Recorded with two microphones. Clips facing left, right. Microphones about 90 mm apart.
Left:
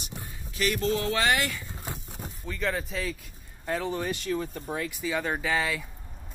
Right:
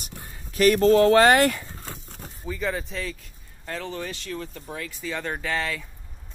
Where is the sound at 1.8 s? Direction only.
15° left (ahead or behind).